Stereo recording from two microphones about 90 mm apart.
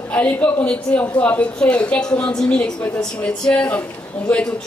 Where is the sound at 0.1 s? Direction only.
15° left (ahead or behind).